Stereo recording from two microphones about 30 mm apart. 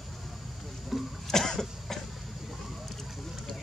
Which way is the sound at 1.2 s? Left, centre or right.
Centre.